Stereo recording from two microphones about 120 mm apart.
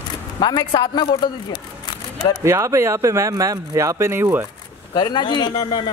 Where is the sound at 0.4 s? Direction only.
35° left (ahead or behind).